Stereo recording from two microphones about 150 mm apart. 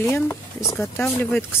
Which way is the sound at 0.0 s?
15° left (ahead or behind).